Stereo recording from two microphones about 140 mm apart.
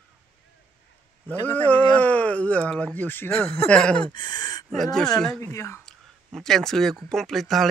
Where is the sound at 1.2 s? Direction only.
10° left (ahead or behind).